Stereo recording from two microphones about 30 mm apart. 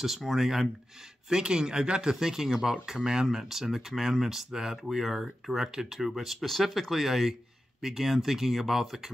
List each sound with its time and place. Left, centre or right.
0.0 s speech: centre
1.3 s speech: right
2.1 s speech: centre
3.4 s speech: centre